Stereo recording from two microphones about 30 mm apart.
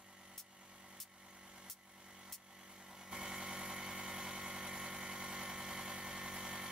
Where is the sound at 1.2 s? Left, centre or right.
Right.